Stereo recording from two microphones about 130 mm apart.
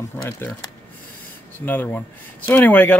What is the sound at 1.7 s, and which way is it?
Speech, 15° left (ahead or behind).